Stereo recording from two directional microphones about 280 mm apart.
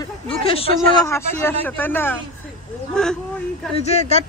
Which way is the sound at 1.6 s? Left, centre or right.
Centre.